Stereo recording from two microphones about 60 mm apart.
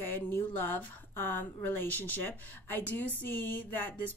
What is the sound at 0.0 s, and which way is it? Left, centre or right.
A woman's voice, left.